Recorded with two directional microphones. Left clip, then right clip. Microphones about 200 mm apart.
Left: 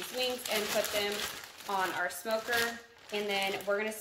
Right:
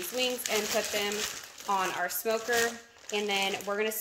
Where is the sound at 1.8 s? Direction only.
45° right (ahead or behind).